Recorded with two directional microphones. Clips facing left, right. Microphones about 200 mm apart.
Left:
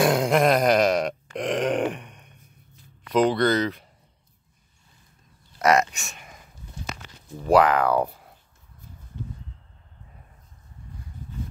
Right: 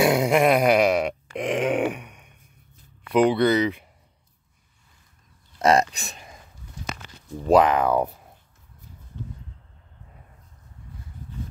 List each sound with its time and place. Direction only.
0.0 s grunt: 5° right (ahead or behind)
3.1 s speech: 10° right (ahead or behind)
5.6 s a sound: 30° right (ahead or behind)
7.4 s speech: 20° right (ahead or behind)